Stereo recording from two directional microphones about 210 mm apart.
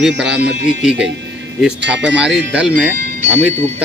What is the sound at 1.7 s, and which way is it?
Speech, 55° right (ahead or behind).